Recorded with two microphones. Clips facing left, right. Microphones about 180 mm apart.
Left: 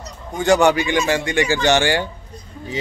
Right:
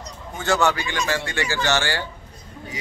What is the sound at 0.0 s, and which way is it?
A man's voice, 15° left (ahead or behind).